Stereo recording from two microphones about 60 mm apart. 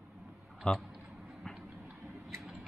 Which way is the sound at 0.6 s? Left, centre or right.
Centre.